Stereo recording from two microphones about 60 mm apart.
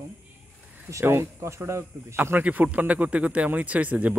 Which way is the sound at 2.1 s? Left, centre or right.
Right.